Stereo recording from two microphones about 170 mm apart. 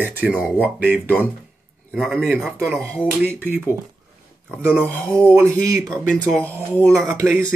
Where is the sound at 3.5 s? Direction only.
10° right (ahead or behind).